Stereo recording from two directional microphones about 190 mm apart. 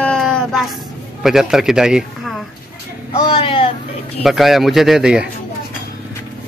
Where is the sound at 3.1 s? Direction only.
25° left (ahead or behind).